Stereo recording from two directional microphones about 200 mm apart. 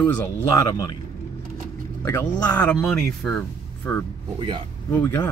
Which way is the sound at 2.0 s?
15° left (ahead or behind).